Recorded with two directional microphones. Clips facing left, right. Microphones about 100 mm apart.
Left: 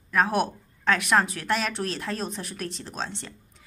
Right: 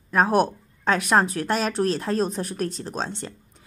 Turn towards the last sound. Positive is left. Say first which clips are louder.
# right 4 dB
turn(degrees=-40)  # may be behind; listen again after turning